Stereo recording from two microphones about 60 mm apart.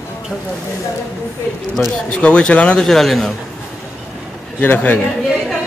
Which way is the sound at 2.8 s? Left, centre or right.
Centre.